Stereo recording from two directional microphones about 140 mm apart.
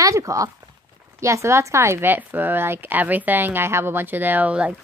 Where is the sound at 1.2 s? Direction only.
20° right (ahead or behind).